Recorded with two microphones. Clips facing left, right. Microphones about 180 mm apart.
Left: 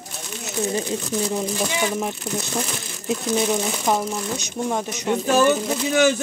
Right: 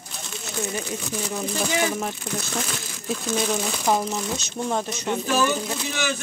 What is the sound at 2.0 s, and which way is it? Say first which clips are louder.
Speech: left 3 dB; 10° left (ahead or behind).